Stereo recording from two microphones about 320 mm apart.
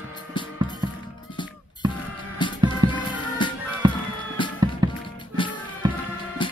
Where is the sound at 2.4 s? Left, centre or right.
Centre.